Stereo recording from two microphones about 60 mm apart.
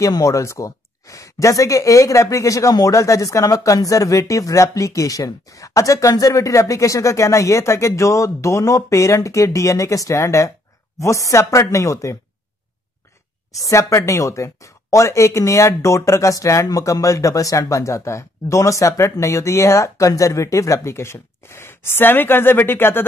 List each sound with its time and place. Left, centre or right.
0.0 s speech: left
13.5 s speech: left